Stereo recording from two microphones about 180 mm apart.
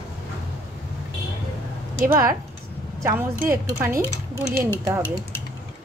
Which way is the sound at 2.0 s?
15° right (ahead or behind).